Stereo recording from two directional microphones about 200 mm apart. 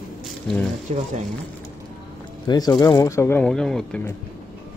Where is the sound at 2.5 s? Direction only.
20° left (ahead or behind).